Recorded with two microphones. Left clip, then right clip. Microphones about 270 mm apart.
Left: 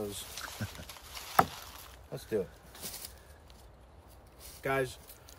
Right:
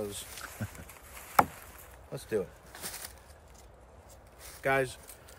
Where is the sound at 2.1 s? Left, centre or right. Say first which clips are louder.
Right 1 dB; centre.